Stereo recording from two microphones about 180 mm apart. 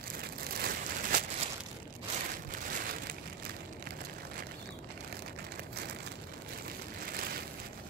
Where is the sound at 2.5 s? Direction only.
55° right (ahead or behind).